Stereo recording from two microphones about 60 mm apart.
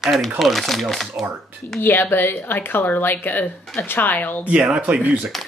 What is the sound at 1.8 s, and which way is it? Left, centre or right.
Speech, left.